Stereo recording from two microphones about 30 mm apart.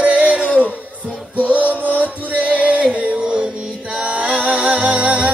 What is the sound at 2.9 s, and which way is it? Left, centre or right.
Music, right.